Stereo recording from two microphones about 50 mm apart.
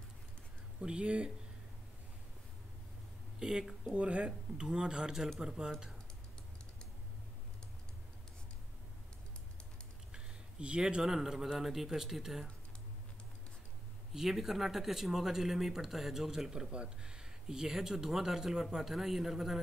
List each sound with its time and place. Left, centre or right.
0.7 s speech: right
3.3 s speech: centre
3.9 s speech: right
10.1 s speech: centre
14.1 s speech: centre